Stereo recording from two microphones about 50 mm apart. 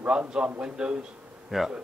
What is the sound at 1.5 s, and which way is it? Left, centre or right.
Speech, centre.